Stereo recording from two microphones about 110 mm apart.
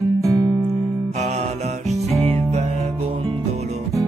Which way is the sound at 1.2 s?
85° right.